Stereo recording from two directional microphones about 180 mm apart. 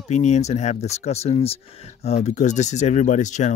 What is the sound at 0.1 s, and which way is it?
Speech, 40° left (ahead or behind).